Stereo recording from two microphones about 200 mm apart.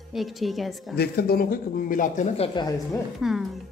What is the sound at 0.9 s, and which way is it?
A man's voice, 50° left (ahead or behind).